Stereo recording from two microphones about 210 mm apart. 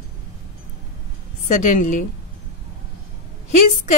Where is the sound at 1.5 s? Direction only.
40° left (ahead or behind).